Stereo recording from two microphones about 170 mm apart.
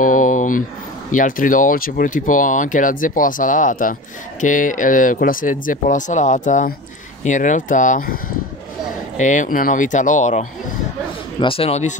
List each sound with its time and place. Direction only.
0.0 s a sound: 50° left (ahead or behind)
1.1 s speech: 50° left (ahead or behind)
9.2 s speech: 45° left (ahead or behind)
11.3 s speech: 30° left (ahead or behind)